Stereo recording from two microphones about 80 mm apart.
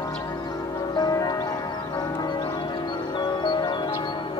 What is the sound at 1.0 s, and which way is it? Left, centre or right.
Music, left.